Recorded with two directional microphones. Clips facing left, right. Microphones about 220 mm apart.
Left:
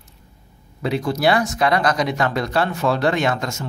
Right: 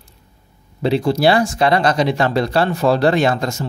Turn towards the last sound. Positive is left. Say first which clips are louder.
# right 4 dB
turn(degrees=-35)  # may be behind; listen again after turning